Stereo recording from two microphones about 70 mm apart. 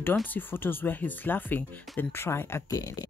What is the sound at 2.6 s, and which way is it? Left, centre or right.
Speech, left.